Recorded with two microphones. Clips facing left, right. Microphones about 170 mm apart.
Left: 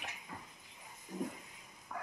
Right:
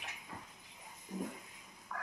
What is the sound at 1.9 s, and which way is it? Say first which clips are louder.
Frog: left 1 dB; 20° left (ahead or behind).